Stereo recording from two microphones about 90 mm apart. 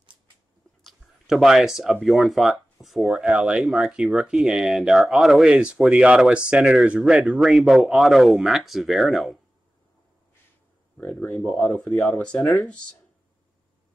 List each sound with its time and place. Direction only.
0.8 s speech: 5° right (ahead or behind)
11.0 s speech: 20° left (ahead or behind)
11.6 s speech: 5° left (ahead or behind)